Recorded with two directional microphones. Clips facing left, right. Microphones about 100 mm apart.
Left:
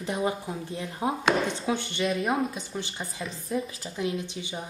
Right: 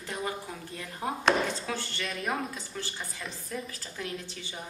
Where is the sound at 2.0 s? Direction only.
Centre (ahead or behind).